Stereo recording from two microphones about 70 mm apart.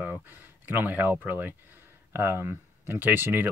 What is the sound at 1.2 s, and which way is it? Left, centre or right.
Speech, right.